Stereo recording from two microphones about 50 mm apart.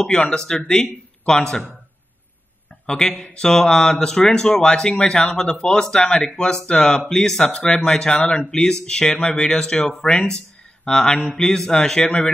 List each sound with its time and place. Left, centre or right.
0.0 s speech: centre
2.9 s speech: centre